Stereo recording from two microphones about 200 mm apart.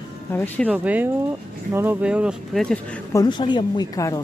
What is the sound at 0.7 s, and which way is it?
A woman's voice, 5° right (ahead or behind).